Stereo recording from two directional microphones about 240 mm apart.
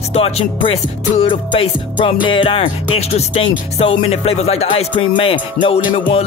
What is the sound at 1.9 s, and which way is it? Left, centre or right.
Music, left.